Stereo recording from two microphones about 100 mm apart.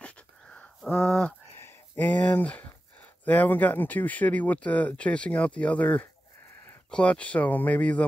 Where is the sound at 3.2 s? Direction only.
15° left (ahead or behind).